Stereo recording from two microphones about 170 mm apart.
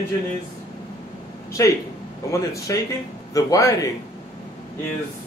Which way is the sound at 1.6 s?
20° left (ahead or behind).